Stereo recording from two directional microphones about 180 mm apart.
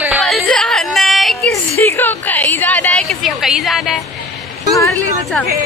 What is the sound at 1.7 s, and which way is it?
A woman's voice, 15° left (ahead or behind).